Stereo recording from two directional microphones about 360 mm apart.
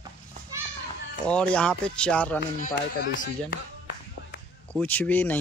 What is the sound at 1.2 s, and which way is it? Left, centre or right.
Speech, centre.